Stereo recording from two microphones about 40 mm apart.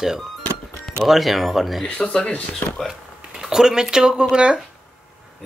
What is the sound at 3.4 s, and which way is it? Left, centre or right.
Speech, centre.